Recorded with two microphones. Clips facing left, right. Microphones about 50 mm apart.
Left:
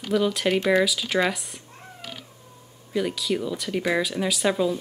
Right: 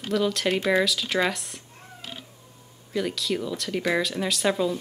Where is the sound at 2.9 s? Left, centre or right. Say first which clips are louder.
Left 2 dB; centre.